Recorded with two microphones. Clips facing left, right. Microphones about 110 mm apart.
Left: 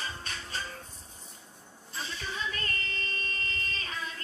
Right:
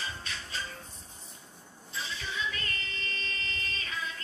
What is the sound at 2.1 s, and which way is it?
Child singing, 45° left (ahead or behind).